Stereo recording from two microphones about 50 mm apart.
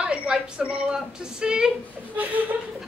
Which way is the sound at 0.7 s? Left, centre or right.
Centre.